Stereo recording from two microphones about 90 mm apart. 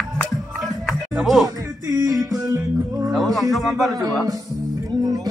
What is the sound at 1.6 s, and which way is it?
Music, 45° right (ahead or behind).